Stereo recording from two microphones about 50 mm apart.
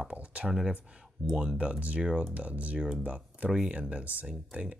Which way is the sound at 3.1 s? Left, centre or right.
Right.